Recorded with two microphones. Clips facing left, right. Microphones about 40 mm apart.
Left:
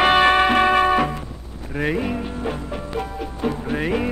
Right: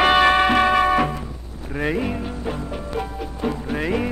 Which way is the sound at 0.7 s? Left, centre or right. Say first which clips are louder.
Left 1 dB; left.